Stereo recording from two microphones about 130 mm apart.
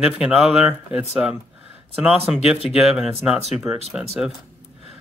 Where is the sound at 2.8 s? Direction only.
5° right (ahead or behind).